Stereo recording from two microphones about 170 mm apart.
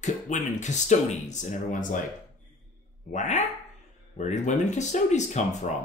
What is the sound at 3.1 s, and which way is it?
Speech, 45° left (ahead or behind).